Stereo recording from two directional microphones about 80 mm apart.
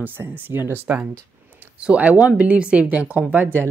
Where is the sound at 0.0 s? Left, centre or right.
Right.